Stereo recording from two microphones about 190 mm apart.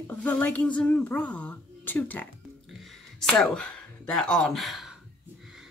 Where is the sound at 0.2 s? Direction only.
10° left (ahead or behind).